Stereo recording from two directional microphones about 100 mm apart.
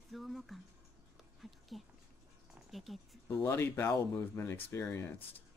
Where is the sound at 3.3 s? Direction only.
25° left (ahead or behind).